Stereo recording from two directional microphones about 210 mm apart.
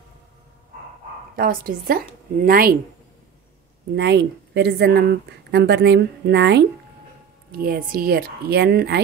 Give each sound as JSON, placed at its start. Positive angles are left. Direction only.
{"t": 1.3, "sound": "speech", "side_deg": -45}
{"t": 3.9, "sound": "speech", "side_deg": -55}